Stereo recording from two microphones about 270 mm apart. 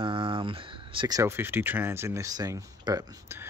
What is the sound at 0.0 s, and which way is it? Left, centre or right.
Speech, centre.